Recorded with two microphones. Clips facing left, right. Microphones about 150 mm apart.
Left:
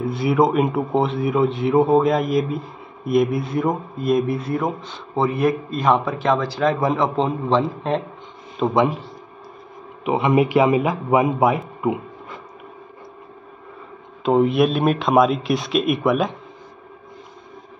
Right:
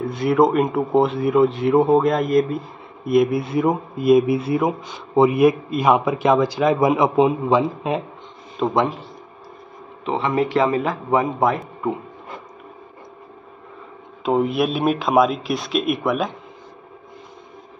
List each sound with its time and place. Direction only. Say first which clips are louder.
0.0 s a man's voice: right 1 dB; 5° left (ahead or behind)
10.0 s a man's voice: left 3 dB; 15° left (ahead or behind)
14.2 s speech: left 3 dB; centre (ahead or behind)